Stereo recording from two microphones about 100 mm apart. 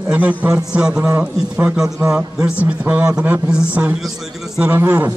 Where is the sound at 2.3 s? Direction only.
10° right (ahead or behind).